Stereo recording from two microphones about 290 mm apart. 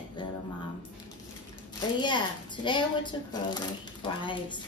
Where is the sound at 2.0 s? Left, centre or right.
Centre.